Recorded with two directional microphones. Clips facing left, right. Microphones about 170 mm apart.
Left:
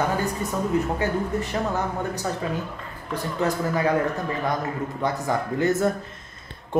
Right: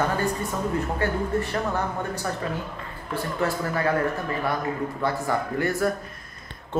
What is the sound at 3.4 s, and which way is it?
Speech, 15° left (ahead or behind).